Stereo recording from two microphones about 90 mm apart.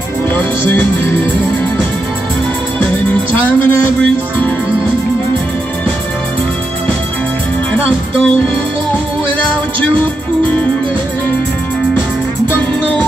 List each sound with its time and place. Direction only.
0.7 s music: 25° left (ahead or behind)
3.5 s music: 20° left (ahead or behind)